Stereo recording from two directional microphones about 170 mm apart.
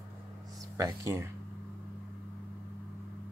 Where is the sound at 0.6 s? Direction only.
20° right (ahead or behind).